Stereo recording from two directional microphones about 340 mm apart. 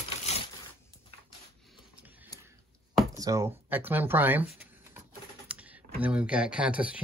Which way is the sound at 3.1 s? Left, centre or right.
Centre.